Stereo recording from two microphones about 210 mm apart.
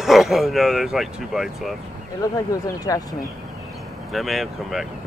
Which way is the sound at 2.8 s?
15° left (ahead or behind).